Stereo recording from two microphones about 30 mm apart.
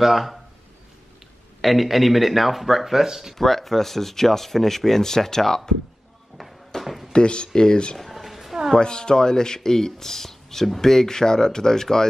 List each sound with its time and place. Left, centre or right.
0.0 s speech: centre
1.6 s speech: centre
3.3 s speech: centre
6.8 s a sound: centre
7.1 s speech: left
8.0 s a sound: centre
8.7 s speech: left